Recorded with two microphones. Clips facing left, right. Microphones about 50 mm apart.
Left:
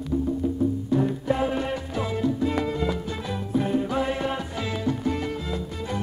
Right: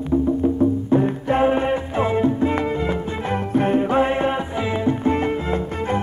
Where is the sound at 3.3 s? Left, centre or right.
Right.